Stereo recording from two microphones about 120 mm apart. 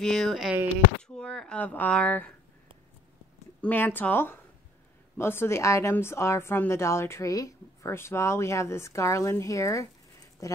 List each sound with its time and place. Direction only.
0.0 s speech: centre (ahead or behind)
3.6 s a woman's voice: 15° left (ahead or behind)